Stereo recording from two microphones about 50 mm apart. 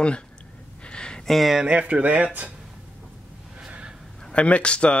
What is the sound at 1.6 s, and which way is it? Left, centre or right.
Speech, right.